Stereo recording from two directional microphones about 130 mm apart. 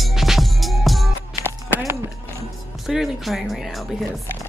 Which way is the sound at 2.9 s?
Centre (ahead or behind).